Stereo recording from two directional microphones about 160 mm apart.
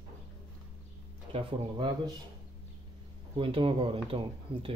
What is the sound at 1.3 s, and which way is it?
Speech, 30° right (ahead or behind).